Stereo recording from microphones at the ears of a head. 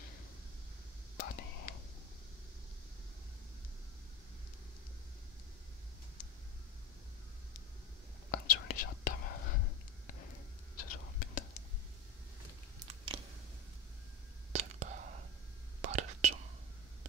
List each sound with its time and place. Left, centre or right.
1.1 s whispering: left
8.3 s whispering: left
12.7 s biting: right
14.5 s whispering: right